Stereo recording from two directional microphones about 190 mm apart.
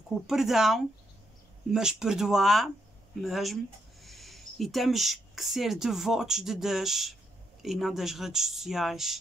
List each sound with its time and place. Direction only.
0.3 s speech: centre (ahead or behind)